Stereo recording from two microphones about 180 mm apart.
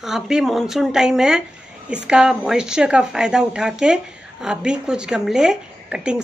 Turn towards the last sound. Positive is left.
turn(degrees=-5)  # may be behind; listen again after turning